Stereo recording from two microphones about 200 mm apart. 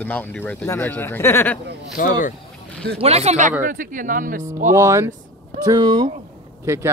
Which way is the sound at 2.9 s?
30° right (ahead or behind).